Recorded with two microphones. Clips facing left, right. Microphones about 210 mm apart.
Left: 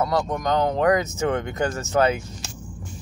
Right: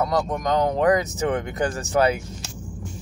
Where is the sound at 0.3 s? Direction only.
15° right (ahead or behind).